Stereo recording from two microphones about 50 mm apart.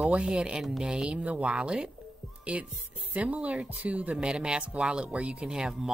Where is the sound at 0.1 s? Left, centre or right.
Centre.